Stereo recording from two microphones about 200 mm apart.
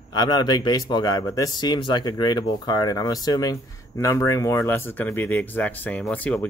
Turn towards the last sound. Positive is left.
turn(degrees=5)  # may be behind; listen again after turning